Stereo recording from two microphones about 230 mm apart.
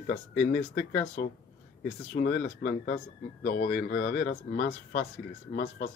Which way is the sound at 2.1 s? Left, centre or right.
Left.